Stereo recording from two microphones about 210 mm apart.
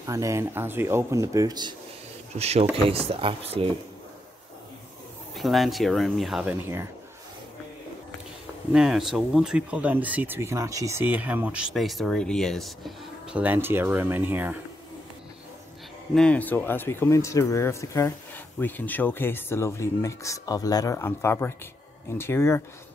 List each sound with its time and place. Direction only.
0.0 s speech: 15° right (ahead or behind)
5.3 s speech: centre (ahead or behind)
8.7 s speech: centre (ahead or behind)
16.2 s speech: 5° left (ahead or behind)